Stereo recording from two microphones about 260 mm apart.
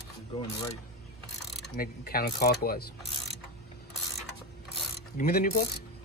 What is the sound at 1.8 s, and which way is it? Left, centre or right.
Speech, left.